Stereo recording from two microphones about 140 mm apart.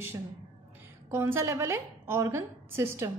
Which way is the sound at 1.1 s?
15° right (ahead or behind).